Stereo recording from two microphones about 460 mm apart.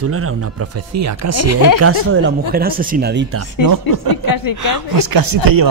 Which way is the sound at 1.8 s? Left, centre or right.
Right.